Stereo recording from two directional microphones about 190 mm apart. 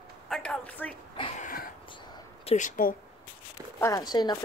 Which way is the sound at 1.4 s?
50° left (ahead or behind).